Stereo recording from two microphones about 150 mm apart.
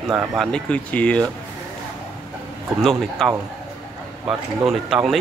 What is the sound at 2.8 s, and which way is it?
Speech, centre (ahead or behind).